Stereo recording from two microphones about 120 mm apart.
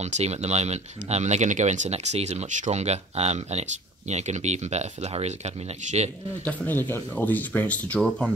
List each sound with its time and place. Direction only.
0.0 s speech: 65° right (ahead or behind)
6.4 s speech: 15° left (ahead or behind)